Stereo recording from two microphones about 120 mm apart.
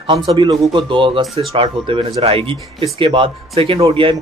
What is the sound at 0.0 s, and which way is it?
Speech, 50° right (ahead or behind).